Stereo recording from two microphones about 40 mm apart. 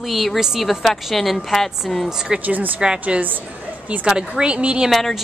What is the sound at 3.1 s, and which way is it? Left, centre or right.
A woman's voice, right.